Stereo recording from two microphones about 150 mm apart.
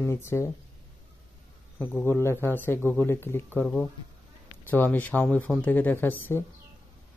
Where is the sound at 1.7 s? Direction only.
15° left (ahead or behind).